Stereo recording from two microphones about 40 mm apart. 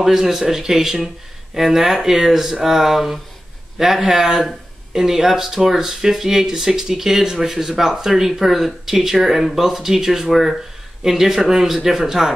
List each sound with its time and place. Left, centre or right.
0.0 s speech: centre